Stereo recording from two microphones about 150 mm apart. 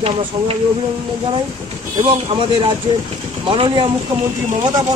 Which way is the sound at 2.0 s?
35° right (ahead or behind).